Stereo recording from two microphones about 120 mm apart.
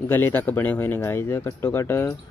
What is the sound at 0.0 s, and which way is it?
Speech, 20° left (ahead or behind).